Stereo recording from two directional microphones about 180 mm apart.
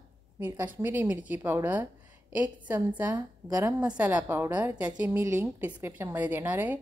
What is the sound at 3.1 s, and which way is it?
Speech, 20° right (ahead or behind).